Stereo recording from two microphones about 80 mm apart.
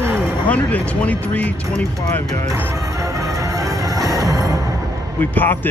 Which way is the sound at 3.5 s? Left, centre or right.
Right.